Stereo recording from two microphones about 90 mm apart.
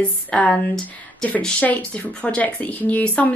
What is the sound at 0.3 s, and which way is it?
Speech, 15° left (ahead or behind).